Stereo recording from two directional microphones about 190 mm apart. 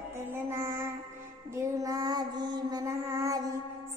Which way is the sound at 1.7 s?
20° right (ahead or behind).